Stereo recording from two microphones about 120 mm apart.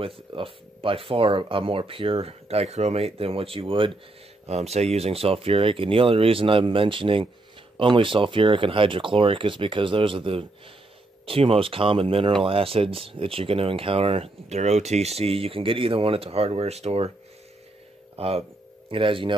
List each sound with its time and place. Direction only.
0.0 s speech: 50° right (ahead or behind)
4.5 s speech: 60° right (ahead or behind)
18.1 s speech: 55° right (ahead or behind)